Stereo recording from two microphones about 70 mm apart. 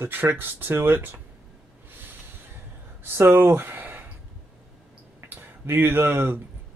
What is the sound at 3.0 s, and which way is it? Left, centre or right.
Speech, right.